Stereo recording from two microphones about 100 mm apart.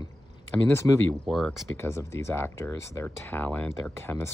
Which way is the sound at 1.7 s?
25° left (ahead or behind).